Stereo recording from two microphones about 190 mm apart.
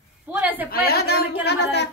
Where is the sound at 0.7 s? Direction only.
55° left (ahead or behind).